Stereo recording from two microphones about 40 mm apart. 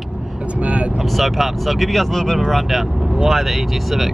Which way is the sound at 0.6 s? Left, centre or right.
Right.